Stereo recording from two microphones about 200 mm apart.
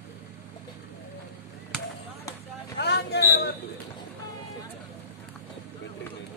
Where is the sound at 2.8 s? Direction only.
55° left (ahead or behind).